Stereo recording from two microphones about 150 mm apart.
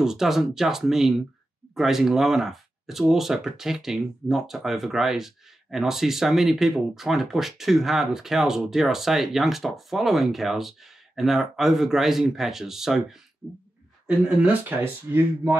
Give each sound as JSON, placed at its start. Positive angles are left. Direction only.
{"t": 0.0, "sound": "speech", "side_deg": 0}
{"t": 14.0, "sound": "speech", "side_deg": -10}